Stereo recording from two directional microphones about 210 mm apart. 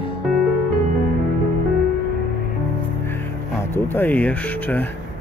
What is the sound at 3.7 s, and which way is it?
Speech, 10° left (ahead or behind).